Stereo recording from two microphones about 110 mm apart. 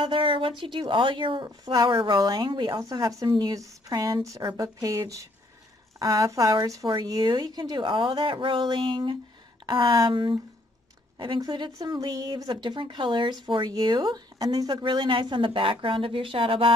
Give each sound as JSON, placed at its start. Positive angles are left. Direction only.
{"t": 0.0, "sound": "speech", "side_deg": -50}
{"t": 2.8, "sound": "speech", "side_deg": -30}